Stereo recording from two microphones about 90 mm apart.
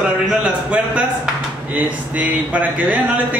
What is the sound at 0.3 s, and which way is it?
A man's voice, 15° right (ahead or behind).